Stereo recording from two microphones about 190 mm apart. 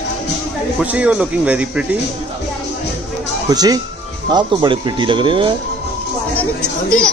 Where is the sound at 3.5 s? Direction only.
20° right (ahead or behind).